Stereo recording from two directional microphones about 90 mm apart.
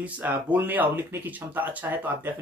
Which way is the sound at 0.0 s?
20° right (ahead or behind).